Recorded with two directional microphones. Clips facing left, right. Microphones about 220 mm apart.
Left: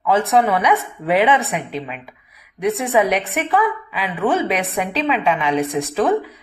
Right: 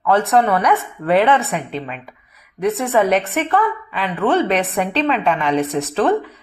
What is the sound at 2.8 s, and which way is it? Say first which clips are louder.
A woman's voice: right 2 dB; centre (ahead or behind).